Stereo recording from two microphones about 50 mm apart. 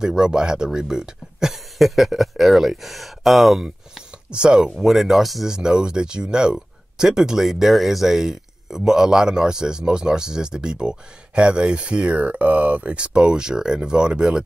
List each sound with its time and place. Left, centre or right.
0.0 s speech: centre
4.3 s speech: centre
5.5 s speech: centre